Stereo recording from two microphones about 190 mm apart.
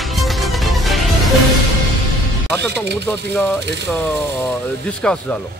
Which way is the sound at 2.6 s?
65° right (ahead or behind).